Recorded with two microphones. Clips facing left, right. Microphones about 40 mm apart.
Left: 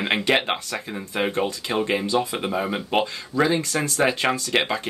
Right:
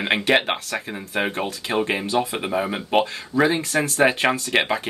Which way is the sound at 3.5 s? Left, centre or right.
Right.